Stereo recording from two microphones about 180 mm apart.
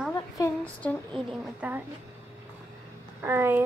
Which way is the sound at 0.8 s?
5° left (ahead or behind).